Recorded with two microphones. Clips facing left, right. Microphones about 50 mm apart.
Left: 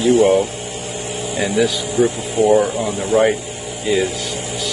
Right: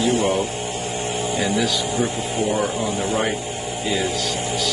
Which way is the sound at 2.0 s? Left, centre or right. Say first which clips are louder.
Left 11 dB; left.